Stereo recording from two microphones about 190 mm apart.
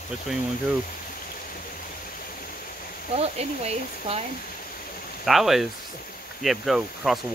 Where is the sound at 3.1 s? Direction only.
35° right (ahead or behind).